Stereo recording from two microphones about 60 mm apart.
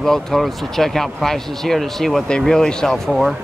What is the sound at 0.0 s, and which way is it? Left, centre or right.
Speech, centre.